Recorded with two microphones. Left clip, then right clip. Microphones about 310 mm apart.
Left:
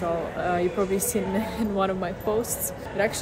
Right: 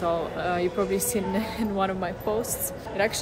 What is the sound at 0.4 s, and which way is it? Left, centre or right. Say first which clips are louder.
A woman's voice: left 1 dB; centre.